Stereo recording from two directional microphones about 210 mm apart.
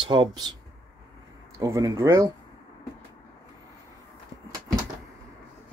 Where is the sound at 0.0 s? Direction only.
25° right (ahead or behind).